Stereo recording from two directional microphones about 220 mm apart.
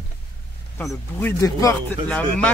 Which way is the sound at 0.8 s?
5° left (ahead or behind).